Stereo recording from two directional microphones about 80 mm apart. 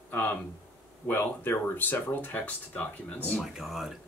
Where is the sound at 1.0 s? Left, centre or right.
Left.